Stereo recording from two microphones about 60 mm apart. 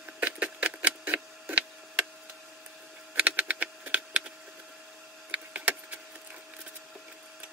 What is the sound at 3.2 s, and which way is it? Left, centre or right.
Typing, right.